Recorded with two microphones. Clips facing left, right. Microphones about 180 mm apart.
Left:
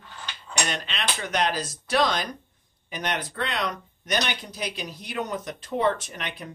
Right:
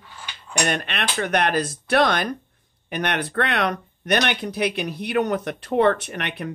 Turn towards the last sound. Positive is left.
turn(degrees=-65)  # may be behind; listen again after turning